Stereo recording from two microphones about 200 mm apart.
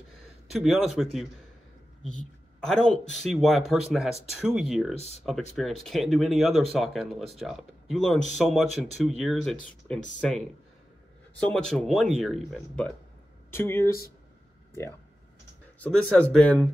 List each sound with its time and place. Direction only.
0.5 s speech: centre (ahead or behind)
2.6 s speech: 5° left (ahead or behind)
4.9 s speech: 30° left (ahead or behind)
5.2 s speech: centre (ahead or behind)
15.8 s speech: 5° left (ahead or behind)